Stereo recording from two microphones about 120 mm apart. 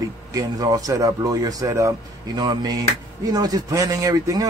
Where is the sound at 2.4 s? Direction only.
35° right (ahead or behind).